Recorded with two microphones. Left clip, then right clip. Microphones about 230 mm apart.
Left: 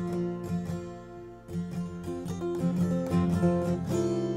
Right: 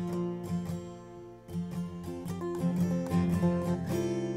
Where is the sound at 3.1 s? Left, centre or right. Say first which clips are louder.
Left 4 dB; right.